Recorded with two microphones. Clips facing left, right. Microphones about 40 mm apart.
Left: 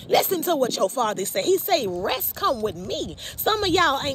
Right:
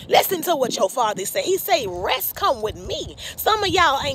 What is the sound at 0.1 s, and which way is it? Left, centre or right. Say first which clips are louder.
Speech: right 3 dB; right.